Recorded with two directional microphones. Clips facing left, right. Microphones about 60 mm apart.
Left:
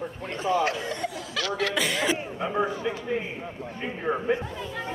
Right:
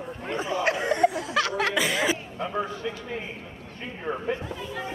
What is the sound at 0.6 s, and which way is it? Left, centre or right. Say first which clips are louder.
Chuckle: right 6 dB; right.